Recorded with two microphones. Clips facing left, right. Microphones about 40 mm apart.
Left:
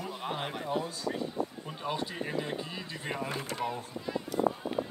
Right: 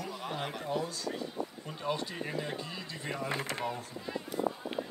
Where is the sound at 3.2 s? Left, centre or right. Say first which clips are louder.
Right 1 dB; right.